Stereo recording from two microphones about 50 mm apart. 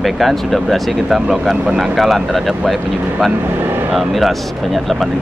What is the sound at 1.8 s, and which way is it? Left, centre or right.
Speech, centre.